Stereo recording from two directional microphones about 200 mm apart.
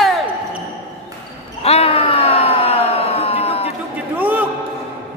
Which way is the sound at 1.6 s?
30° left (ahead or behind).